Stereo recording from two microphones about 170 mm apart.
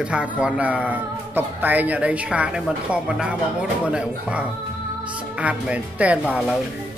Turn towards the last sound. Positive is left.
turn(degrees=-5)  # may be behind; listen again after turning